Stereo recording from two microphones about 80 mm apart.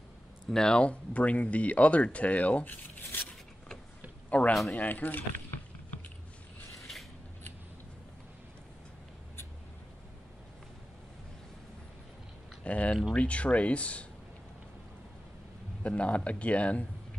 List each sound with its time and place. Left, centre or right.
0.5 s speech: centre; by 3.3 s left
4.3 s speech: centre
12.6 s speech: centre
15.8 s speech: centre